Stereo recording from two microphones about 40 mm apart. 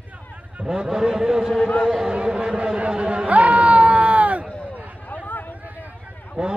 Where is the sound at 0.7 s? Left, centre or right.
Centre; by 4.5 s right.